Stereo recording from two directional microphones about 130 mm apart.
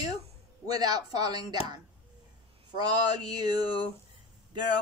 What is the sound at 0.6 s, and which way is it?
Speech, 30° right (ahead or behind).